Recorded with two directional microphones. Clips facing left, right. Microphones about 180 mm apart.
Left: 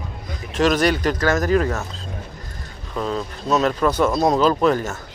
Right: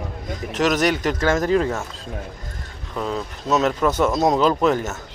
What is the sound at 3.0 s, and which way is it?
Speech, 15° right (ahead or behind).